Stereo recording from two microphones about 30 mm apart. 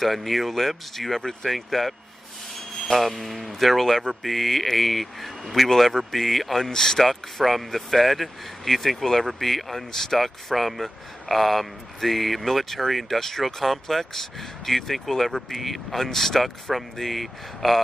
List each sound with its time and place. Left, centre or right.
0.0 s speech: centre
6.7 s speech: centre
7.1 s speech: centre
16.4 s speech: centre